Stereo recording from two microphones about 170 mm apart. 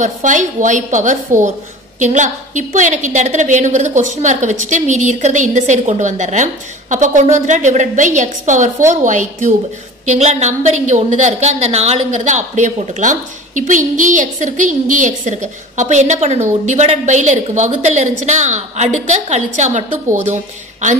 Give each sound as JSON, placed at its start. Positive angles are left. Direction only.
{"t": 0.0, "sound": "a woman's voice", "side_deg": -45}